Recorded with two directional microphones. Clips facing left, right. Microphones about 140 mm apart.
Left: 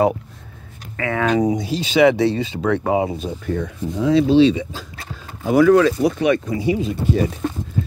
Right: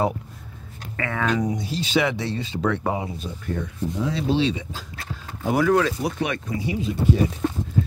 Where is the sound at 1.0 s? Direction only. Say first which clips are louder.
Left 6 dB; 70° left (ahead or behind).